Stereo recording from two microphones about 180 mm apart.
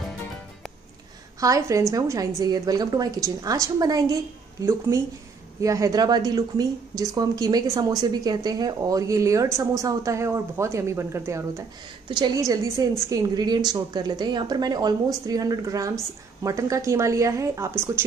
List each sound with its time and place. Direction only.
1.4 s a woman's voice: 20° right (ahead or behind)